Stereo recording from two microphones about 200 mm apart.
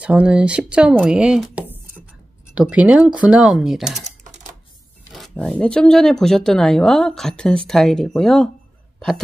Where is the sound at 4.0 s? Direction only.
35° right (ahead or behind).